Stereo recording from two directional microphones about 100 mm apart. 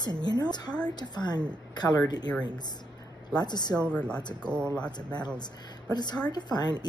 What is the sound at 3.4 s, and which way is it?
Speech, 45° left (ahead or behind).